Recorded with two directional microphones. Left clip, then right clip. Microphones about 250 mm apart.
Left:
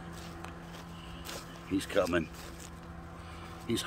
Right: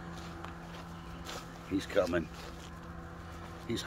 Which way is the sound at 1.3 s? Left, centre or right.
Centre.